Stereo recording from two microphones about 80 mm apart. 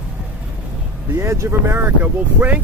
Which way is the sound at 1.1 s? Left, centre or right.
Right.